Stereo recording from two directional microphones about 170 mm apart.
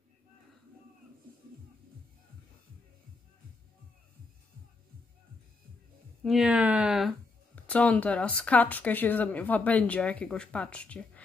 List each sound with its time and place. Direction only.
6.2 s speech: 5° right (ahead or behind)